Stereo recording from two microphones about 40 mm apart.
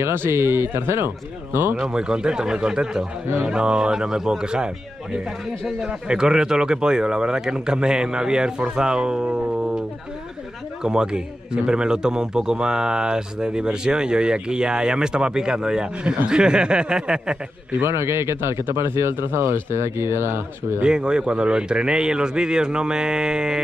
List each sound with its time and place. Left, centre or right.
0.0 s speech: right
1.9 s a man's voice: right
6.0 s a man's voice: centre
18.4 s speech: right
20.8 s a man's voice: right